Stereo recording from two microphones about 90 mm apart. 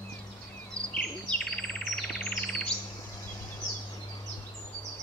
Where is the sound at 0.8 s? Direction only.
40° right (ahead or behind).